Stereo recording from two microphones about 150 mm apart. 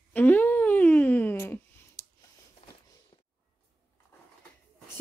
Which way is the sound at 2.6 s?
40° left (ahead or behind).